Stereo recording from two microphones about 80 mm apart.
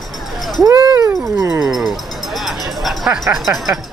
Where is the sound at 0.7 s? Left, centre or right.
Right.